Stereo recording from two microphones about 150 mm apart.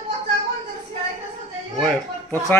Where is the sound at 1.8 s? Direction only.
10° left (ahead or behind).